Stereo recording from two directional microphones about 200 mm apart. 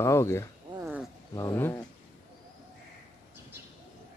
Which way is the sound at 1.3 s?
15° left (ahead or behind).